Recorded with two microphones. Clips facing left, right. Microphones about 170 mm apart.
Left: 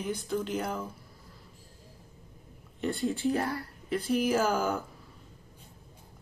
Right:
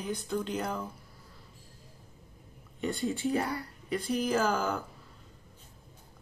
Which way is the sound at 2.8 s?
Centre (ahead or behind).